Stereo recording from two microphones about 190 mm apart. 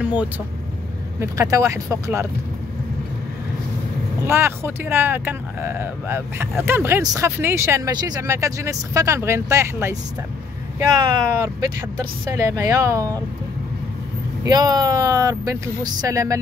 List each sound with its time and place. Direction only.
0.0 s speech: 5° right (ahead or behind)
4.3 s speech: 10° right (ahead or behind)
14.4 s speech: 20° right (ahead or behind)